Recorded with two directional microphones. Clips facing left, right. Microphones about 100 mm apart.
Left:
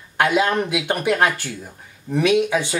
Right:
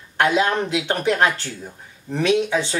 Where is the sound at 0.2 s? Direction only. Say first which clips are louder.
Even; 15° left (ahead or behind).